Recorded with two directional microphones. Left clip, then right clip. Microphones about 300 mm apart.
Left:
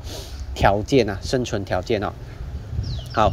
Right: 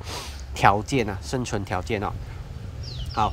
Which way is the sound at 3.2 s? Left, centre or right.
Centre.